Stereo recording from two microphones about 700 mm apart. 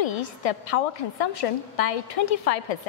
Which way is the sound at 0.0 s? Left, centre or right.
Left.